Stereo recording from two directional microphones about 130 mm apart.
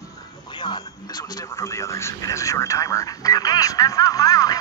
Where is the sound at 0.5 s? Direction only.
35° left (ahead or behind).